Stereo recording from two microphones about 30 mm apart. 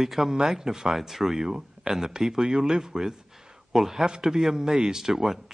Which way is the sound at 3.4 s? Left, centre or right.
Centre.